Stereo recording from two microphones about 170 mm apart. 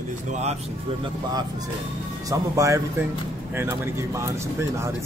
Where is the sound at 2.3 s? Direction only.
20° right (ahead or behind).